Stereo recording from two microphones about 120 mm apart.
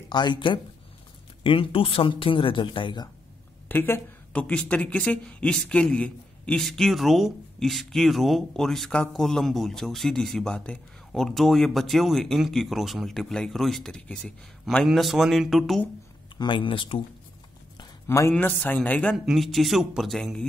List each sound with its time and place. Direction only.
0.1 s speech: 40° left (ahead or behind)
3.6 s speech: 20° left (ahead or behind); by 15.8 s centre (ahead or behind)
16.3 s speech: 45° left (ahead or behind)
18.0 s speech: 25° left (ahead or behind)
19.1 s speech: centre (ahead or behind)